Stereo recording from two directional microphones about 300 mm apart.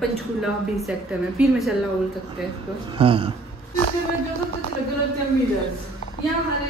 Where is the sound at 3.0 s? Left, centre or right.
Centre.